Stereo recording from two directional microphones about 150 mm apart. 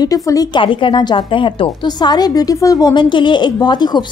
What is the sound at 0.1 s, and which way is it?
Speech, 25° left (ahead or behind).